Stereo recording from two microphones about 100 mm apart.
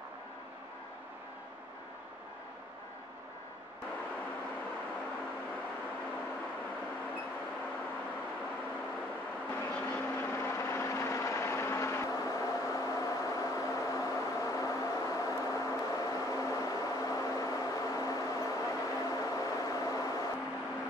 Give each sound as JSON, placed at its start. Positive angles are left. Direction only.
{"t": 9.7, "sound": "vehicle", "side_deg": 10}
{"t": 10.3, "sound": "vehicle", "side_deg": 25}